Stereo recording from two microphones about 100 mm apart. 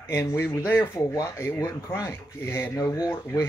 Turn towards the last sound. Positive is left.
turn(degrees=35)  # may be behind; listen again after turning